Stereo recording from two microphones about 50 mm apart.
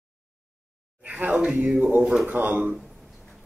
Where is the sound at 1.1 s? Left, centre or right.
Right.